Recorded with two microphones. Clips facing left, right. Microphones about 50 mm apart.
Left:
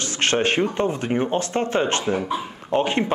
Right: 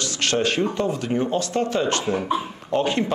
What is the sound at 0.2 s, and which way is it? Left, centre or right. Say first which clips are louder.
Speech: left 2 dB; left.